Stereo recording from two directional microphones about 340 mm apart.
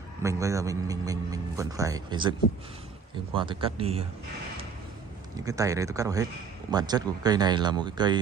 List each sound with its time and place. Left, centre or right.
0.2 s a man's voice: centre
3.3 s a man's voice: centre
5.4 s a man's voice: centre